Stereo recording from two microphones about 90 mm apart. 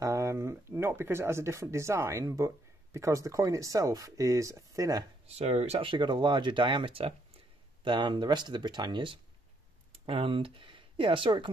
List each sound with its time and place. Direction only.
0.0 s speech: 35° right (ahead or behind)
5.8 s speech: 65° right (ahead or behind)
9.9 s speech: 90° right; by 11.5 s 65° right (ahead or behind)